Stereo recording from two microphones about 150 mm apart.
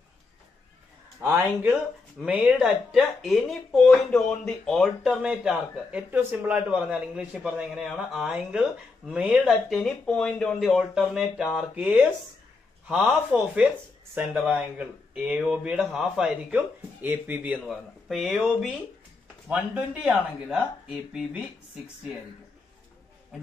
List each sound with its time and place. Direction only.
1.2 s speech: 10° right (ahead or behind)